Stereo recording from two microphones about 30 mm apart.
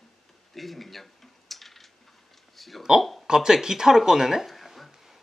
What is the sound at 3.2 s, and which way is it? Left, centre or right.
Speech, right.